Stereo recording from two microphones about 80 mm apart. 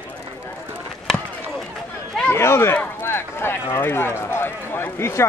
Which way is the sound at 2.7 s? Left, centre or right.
Left.